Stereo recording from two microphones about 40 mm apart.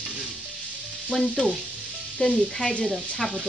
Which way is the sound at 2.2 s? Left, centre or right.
Centre.